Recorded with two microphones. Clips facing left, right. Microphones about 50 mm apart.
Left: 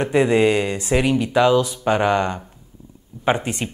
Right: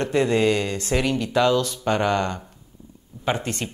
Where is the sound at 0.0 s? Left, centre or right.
Centre.